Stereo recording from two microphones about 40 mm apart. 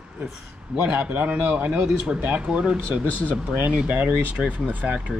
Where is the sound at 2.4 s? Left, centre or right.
Right.